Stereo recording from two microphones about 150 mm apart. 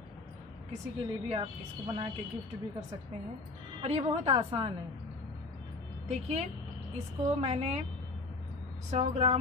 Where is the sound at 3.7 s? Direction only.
45° right (ahead or behind).